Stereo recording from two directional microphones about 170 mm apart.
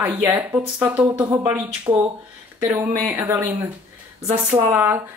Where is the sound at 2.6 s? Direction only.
15° right (ahead or behind).